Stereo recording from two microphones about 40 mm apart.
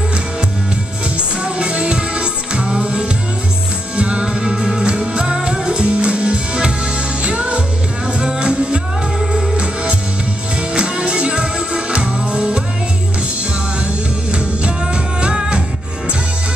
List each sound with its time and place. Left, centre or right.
1.1 s music: right
4.3 s music: centre
4.8 s music: right
10.7 s music: right
14.3 s music: right